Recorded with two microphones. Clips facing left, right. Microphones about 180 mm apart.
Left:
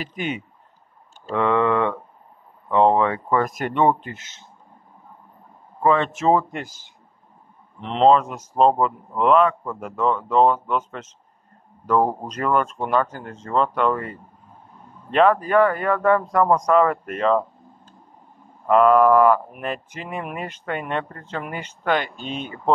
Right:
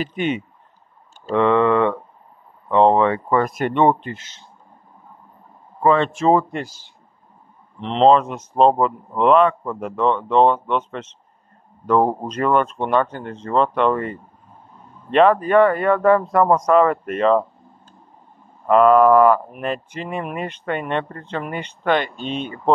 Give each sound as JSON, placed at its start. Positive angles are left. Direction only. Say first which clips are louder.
{"t": 0.0, "sound": "speech", "louder": "right 6 dB", "side_deg": 0}
{"t": 1.2, "sound": "a sound", "louder": "right 4 dB", "side_deg": -20}
{"t": 1.6, "sound": "speech", "louder": "right 3 dB", "side_deg": -20}
{"t": 3.4, "sound": "speech", "louder": "right 4 dB", "side_deg": 15}
{"t": 7.8, "sound": "speech", "louder": "right 2 dB", "side_deg": 10}
{"t": 11.8, "sound": "speech", "louder": "right 3 dB", "side_deg": -20}
{"t": 12.4, "sound": "speech", "louder": "right 3 dB", "side_deg": 0}
{"t": 13.4, "sound": "speech", "louder": "right 3 dB", "side_deg": -20}
{"t": 13.7, "sound": "speech", "louder": "right 3 dB", "side_deg": 0}
{"t": 18.7, "sound": "speech", "louder": "right 2 dB", "side_deg": 5}